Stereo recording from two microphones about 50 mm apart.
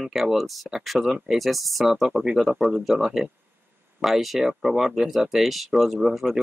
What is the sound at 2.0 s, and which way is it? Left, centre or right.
Speech, centre.